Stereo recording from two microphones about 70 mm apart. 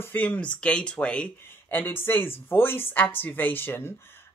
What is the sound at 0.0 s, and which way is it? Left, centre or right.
Speech, left.